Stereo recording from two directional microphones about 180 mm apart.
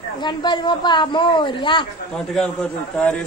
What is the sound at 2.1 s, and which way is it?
A man's voice, 5° left (ahead or behind).